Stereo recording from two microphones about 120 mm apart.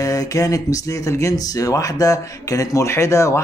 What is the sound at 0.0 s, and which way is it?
Speech, 30° left (ahead or behind).